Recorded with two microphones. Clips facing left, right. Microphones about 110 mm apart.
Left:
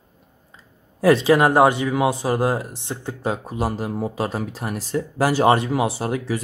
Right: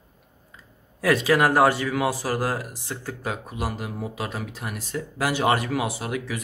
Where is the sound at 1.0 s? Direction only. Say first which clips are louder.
Left 5 dB; 25° left (ahead or behind).